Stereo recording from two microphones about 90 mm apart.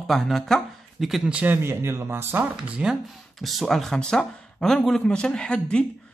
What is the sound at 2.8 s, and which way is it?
Speech, 15° right (ahead or behind).